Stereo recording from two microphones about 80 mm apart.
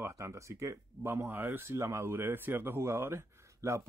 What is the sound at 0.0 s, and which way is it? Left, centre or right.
Speech, right.